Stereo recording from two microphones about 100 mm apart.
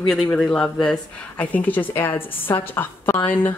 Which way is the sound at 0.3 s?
10° left (ahead or behind).